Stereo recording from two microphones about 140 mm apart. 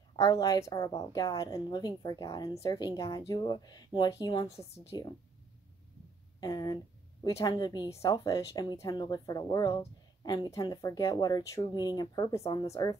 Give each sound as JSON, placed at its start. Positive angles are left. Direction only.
{"t": 0.1, "sound": "a woman's voice", "side_deg": 25}
{"t": 6.4, "sound": "a woman's voice", "side_deg": 25}